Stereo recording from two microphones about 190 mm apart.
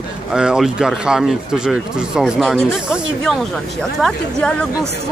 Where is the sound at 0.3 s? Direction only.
5° right (ahead or behind).